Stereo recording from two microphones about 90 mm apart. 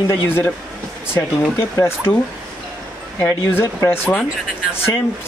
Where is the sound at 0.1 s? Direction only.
25° left (ahead or behind).